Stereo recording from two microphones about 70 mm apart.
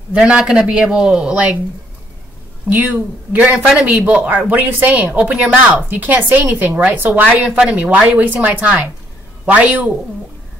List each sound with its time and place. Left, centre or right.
0.1 s speech: centre
2.7 s a woman's voice: right